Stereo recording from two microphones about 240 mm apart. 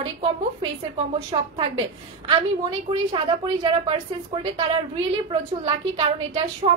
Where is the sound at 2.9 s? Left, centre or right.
Right.